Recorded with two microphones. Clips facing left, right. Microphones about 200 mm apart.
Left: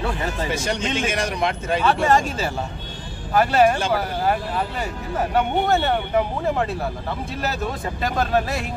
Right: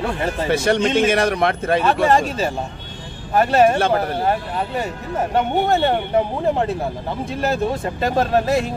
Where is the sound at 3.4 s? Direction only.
25° right (ahead or behind).